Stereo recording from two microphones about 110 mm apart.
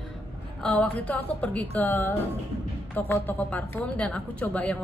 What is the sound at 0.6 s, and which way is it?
Speech, 10° left (ahead or behind).